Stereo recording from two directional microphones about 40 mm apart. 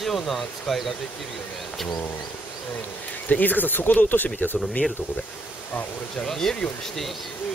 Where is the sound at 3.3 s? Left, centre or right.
Left.